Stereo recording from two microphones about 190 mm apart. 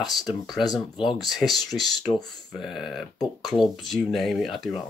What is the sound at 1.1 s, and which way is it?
Speech, centre (ahead or behind).